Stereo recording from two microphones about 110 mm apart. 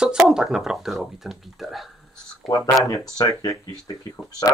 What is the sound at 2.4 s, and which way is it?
Speech, 30° left (ahead or behind).